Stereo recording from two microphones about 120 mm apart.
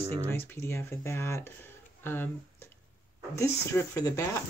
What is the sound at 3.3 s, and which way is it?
Speech, 25° left (ahead or behind).